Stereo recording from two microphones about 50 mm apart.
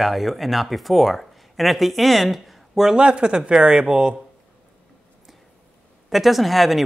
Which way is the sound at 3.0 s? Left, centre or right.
Centre.